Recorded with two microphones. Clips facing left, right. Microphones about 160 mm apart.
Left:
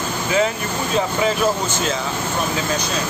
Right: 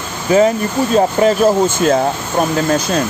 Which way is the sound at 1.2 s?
50° right (ahead or behind).